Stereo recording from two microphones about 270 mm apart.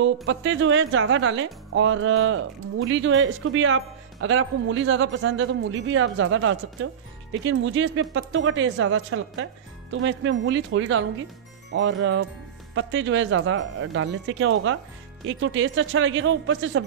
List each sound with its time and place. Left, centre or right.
0.0 s speech: right